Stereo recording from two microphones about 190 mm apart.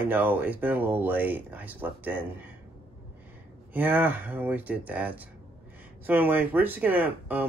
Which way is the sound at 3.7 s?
10° right (ahead or behind).